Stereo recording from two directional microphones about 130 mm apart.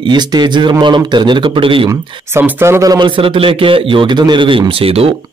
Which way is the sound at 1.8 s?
20° right (ahead or behind).